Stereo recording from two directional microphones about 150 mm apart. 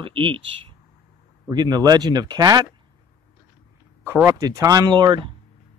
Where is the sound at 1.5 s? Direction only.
25° right (ahead or behind).